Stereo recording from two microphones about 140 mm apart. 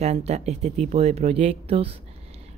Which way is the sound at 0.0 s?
50° right (ahead or behind).